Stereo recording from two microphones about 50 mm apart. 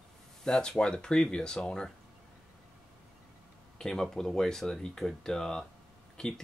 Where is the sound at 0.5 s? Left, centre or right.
Centre.